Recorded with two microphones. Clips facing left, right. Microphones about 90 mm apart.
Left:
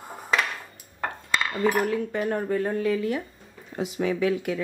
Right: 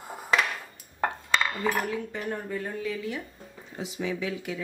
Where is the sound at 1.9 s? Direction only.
55° left (ahead or behind).